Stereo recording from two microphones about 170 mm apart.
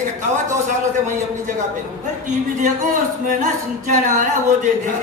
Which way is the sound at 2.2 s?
45° right (ahead or behind).